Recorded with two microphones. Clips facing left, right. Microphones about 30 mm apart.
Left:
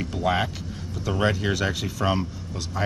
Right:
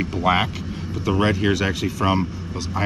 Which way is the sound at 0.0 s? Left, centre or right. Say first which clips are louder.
Right 4 dB; right.